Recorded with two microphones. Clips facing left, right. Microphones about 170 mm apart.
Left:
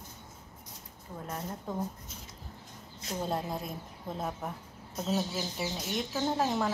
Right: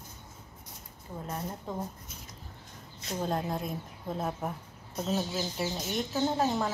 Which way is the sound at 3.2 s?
5° left (ahead or behind).